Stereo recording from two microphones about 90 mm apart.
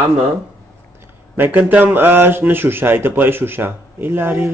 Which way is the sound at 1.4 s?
20° right (ahead or behind).